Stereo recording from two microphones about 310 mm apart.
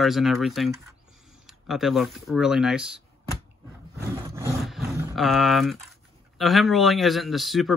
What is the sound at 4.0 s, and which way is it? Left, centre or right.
Speech, centre.